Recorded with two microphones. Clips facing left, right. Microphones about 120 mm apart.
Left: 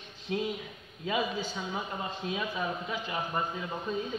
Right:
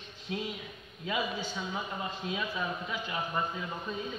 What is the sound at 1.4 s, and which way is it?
Speech, 35° left (ahead or behind).